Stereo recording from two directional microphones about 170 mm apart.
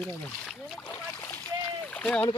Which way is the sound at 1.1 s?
15° left (ahead or behind).